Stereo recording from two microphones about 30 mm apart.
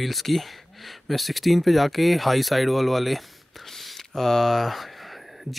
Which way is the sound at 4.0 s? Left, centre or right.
Centre.